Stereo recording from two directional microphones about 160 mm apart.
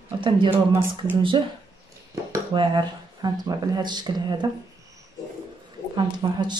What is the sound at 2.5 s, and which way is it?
Speech, 25° right (ahead or behind).